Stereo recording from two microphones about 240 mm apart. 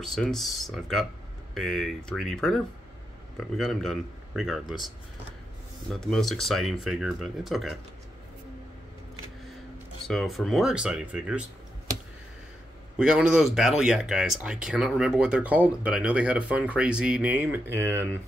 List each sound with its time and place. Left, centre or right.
0.0 s speech: centre
10.0 s speech: centre
12.9 s speech: centre